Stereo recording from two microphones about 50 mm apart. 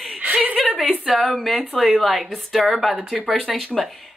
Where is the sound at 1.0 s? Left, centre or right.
Centre.